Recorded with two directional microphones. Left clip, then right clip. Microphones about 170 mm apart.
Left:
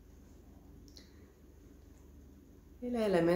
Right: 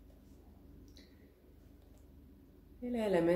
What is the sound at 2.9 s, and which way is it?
Speech, 10° left (ahead or behind).